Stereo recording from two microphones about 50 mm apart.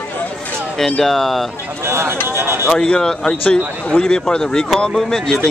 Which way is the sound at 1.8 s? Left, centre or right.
Right.